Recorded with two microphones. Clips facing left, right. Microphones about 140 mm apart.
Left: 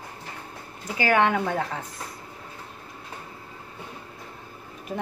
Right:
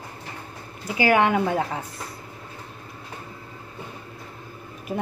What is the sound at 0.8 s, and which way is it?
Speech, 10° right (ahead or behind).